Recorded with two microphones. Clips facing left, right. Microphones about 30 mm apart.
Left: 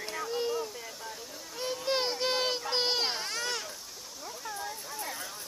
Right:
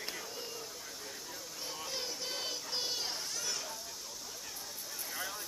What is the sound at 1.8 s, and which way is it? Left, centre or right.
Children playing, left.